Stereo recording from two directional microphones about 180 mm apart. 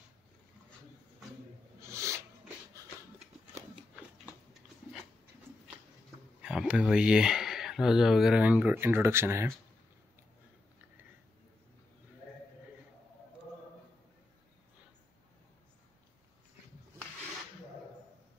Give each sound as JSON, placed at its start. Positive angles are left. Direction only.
{"t": 1.8, "sound": "a sound", "side_deg": -15}
{"t": 4.6, "sound": "dog", "side_deg": -5}
{"t": 6.4, "sound": "speech", "side_deg": -5}